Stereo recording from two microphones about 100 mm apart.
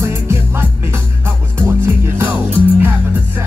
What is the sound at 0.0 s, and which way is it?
Music, 25° right (ahead or behind).